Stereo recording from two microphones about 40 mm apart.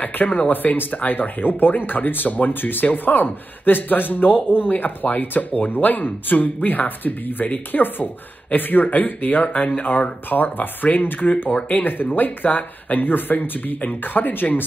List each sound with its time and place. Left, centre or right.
0.0 s speech: left